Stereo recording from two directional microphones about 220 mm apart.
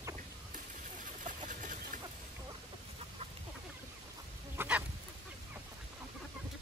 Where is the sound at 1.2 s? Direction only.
35° right (ahead or behind).